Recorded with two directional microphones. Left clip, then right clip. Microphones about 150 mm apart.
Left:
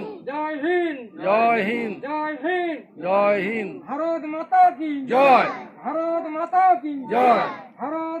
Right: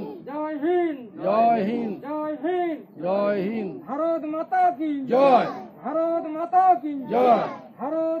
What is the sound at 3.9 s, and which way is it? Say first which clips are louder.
Speech: right 1 dB; 5° right (ahead or behind).